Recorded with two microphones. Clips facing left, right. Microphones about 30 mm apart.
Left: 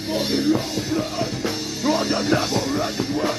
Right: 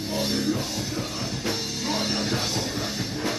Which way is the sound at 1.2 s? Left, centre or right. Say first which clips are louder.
Left 4 dB; centre.